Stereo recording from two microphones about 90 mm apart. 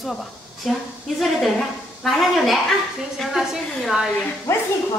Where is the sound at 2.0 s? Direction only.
Centre (ahead or behind).